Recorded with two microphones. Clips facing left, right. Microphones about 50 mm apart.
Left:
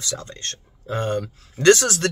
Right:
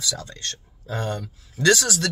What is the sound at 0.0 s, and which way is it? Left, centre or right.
Speech, left.